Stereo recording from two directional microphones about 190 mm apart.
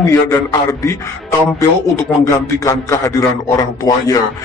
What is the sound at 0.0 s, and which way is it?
A man's voice, 15° left (ahead or behind).